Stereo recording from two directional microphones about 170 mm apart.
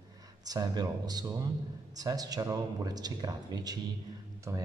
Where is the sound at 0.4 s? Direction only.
25° right (ahead or behind).